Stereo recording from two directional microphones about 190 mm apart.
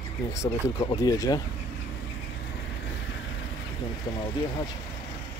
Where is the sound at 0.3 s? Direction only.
20° left (ahead or behind).